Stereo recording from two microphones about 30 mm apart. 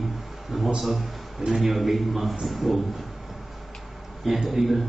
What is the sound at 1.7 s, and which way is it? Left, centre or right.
Speech, centre.